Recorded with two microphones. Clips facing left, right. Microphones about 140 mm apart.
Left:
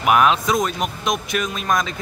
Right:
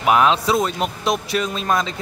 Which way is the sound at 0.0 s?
25° right (ahead or behind).